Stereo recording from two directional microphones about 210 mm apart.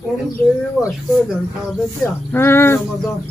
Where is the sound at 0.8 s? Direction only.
Centre (ahead or behind).